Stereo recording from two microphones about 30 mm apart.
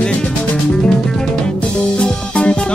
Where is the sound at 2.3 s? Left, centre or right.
Left.